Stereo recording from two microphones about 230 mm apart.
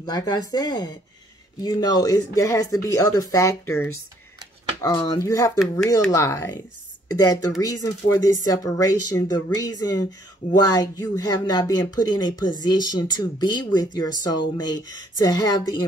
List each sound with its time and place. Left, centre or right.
0.0 s speech: centre